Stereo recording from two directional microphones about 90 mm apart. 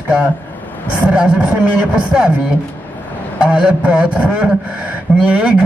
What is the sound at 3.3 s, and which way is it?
A man's voice, 10° right (ahead or behind).